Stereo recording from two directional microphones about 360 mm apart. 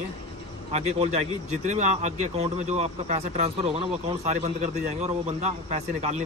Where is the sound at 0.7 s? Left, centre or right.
Centre.